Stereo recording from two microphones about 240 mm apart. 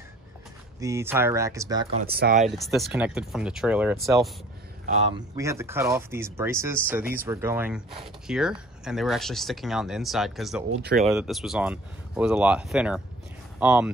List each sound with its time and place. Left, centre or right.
0.7 s speech: centre
2.0 s speech: right
2.4 s speech: centre
4.8 s a man's voice: right
5.3 s speech: centre
10.8 s speech: right
11.1 s speech: centre